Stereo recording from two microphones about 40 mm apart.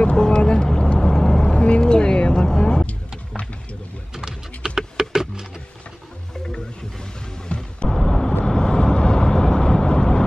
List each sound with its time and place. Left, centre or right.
0.0 s vehicle: centre
4.1 s typing: centre
7.4 s music: left
7.9 s vehicle: centre